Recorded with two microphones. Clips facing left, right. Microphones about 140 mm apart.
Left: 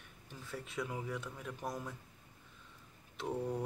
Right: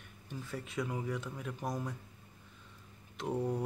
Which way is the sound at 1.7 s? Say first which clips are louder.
Right 4 dB; 15° right (ahead or behind).